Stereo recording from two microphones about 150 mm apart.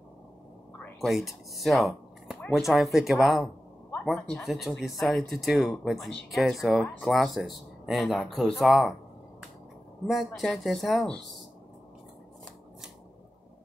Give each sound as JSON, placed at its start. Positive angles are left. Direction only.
{"t": 1.0, "sound": "speech", "side_deg": 0}
{"t": 10.0, "sound": "speech", "side_deg": 0}